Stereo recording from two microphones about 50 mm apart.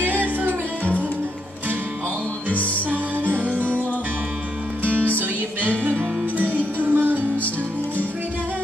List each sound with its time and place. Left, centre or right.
0.0 s music: right
2.5 s music: left
3.3 s music: right
5.6 s music: right